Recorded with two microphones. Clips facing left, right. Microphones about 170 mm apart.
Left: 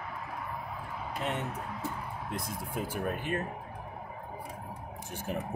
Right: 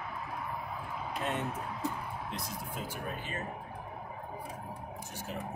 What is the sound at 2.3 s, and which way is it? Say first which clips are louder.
Speech: left 4 dB; 55° left (ahead or behind).